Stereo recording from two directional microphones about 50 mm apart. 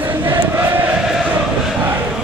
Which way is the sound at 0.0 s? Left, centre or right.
Right.